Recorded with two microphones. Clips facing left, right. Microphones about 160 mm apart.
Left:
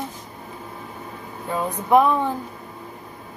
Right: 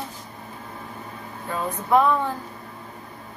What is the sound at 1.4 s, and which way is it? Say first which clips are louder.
Speech: left 3 dB; 15° left (ahead or behind).